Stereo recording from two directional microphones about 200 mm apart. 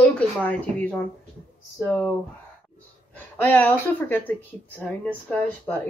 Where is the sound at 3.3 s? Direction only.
10° left (ahead or behind).